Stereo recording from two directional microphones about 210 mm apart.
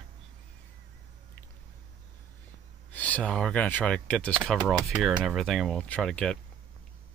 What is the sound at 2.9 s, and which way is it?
Speech, 5° left (ahead or behind).